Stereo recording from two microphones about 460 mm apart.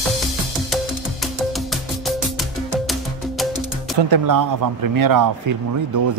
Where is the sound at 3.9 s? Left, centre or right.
Right.